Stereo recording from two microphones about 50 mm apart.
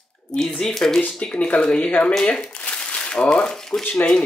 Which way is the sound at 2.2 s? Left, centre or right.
Left.